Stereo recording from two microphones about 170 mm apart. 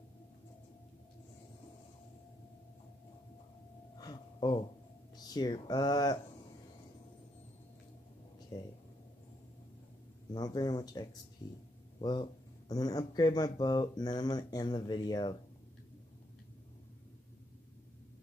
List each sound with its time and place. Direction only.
3.9 s a sound: 25° left (ahead or behind)
5.1 s speech: 25° left (ahead or behind)
8.5 s speech: 20° left (ahead or behind)
10.3 s speech: 25° left (ahead or behind)